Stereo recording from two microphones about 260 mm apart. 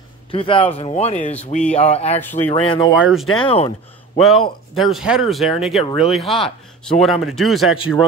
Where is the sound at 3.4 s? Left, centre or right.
Left.